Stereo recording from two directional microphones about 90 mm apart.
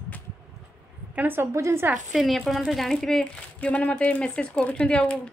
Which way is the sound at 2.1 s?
Centre (ahead or behind).